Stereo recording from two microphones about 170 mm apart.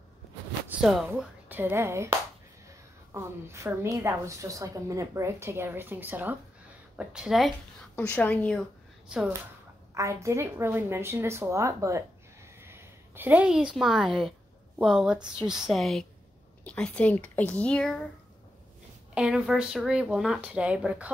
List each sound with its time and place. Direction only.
0.7 s a woman's voice: 5° right (ahead or behind)
7.9 s speech: 10° left (ahead or behind)
9.1 s speech: 5° right (ahead or behind)
9.9 s a woman's voice: 15° right (ahead or behind); by 18.0 s 5° left (ahead or behind)
19.1 s speech: 5° right (ahead or behind)